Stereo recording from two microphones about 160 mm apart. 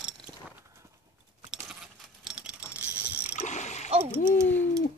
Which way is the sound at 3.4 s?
45° left (ahead or behind).